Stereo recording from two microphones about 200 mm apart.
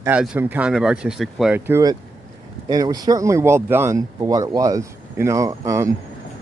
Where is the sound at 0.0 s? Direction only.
5° right (ahead or behind).